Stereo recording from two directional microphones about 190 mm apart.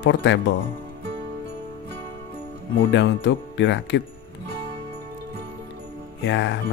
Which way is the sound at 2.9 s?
70° left (ahead or behind).